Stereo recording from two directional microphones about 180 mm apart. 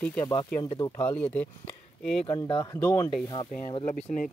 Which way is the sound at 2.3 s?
25° left (ahead or behind).